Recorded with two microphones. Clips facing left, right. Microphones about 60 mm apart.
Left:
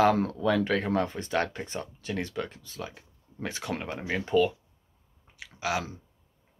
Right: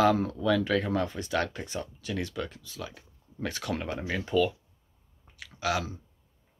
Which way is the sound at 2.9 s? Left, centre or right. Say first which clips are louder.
Even; left.